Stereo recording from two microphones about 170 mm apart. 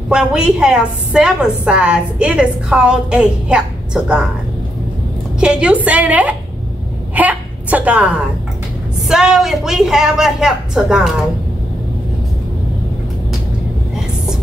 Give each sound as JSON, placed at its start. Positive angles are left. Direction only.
{"t": 0.1, "sound": "a woman's voice", "side_deg": -5}
{"t": 5.4, "sound": "a woman's voice", "side_deg": -5}